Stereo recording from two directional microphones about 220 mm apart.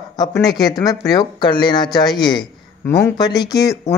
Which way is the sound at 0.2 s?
15° left (ahead or behind).